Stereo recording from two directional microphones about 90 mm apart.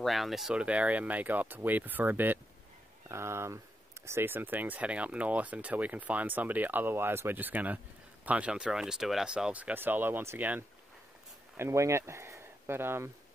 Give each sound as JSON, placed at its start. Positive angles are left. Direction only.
{"t": 0.0, "sound": "speech", "side_deg": 0}